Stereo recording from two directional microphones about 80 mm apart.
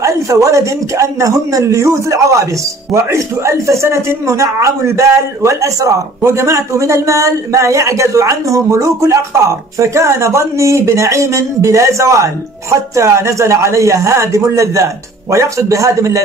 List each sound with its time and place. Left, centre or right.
0.0 s speech: right